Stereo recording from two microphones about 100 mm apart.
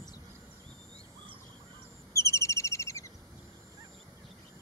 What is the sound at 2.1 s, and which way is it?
Bird vocalization, 30° left (ahead or behind).